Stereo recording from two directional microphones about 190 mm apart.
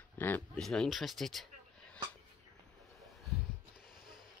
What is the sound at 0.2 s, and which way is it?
Speech, 5° left (ahead or behind).